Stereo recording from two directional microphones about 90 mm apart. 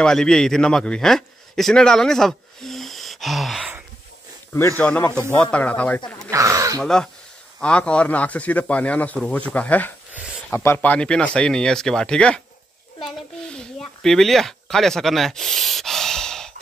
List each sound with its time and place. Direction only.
0.0 s a man's voice: 5° left (ahead or behind)
4.7 s a man's voice: 15° left (ahead or behind)
6.3 s a sound: 35° right (ahead or behind)
6.8 s a man's voice: 5° left (ahead or behind); by 10.9 s 30° left (ahead or behind)
10.9 s a man's voice: 10° left (ahead or behind)
13.0 s a sound: 10° left (ahead or behind)